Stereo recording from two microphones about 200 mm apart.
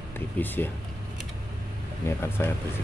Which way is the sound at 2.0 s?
10° left (ahead or behind).